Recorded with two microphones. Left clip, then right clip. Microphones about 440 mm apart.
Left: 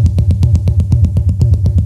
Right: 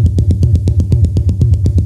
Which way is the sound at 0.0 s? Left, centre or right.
Left.